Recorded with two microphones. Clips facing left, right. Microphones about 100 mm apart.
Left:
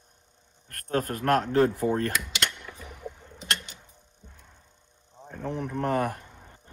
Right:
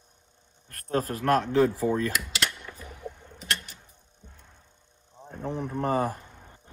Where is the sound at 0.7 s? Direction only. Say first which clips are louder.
Even; 55° left (ahead or behind).